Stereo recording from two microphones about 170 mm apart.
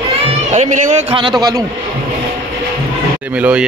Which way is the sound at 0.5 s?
40° right (ahead or behind).